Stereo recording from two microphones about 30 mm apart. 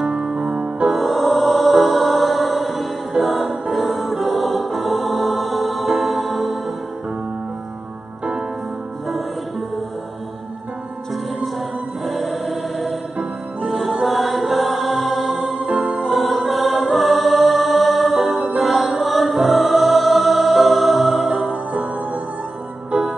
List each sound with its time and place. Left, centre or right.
0.1 s music: right
0.8 s music: centre
12.0 s choir: centre
13.2 s music: centre